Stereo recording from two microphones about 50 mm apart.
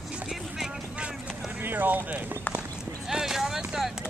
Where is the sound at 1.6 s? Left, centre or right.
Right.